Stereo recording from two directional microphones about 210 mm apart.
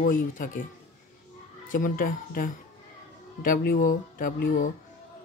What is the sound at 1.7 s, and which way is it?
Speech, 40° left (ahead or behind).